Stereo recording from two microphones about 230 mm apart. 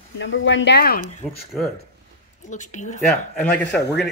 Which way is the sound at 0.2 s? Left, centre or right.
Left.